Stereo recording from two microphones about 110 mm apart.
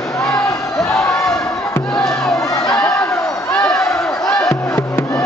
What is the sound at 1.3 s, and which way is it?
Crowd, 25° left (ahead or behind).